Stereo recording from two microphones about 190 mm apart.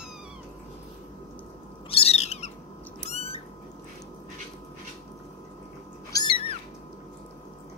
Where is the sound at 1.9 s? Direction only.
30° left (ahead or behind).